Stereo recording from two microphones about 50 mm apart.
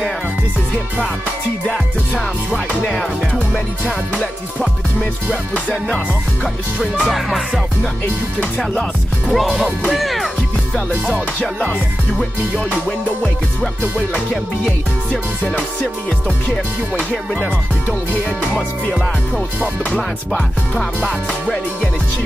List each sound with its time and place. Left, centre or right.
5.5 s music: left
7.1 s music: centre
9.3 s music: centre
12.2 s music: left
19.8 s music: left